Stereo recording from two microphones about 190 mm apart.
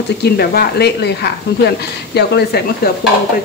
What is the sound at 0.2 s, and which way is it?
A woman's voice, 55° left (ahead or behind).